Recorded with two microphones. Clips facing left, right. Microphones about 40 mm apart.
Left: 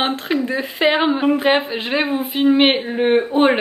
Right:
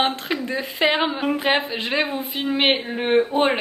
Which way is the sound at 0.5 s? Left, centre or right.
Centre.